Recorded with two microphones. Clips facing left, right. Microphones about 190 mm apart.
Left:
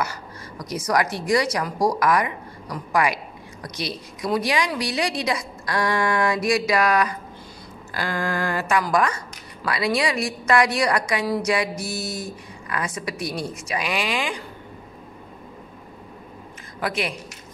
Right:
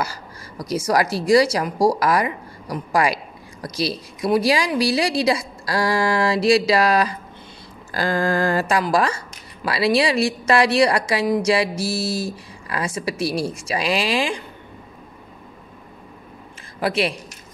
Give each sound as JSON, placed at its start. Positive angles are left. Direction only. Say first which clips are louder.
{"t": 0.0, "sound": "a woman's voice", "louder": "right 1 dB", "side_deg": -30}
{"t": 16.8, "sound": "a woman's voice", "louder": "right 5 dB", "side_deg": -30}